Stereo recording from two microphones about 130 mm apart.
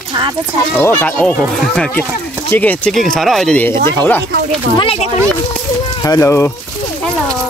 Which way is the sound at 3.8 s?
15° left (ahead or behind).